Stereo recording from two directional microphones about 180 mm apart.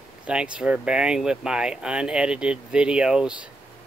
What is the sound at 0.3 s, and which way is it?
Speech, 5° right (ahead or behind).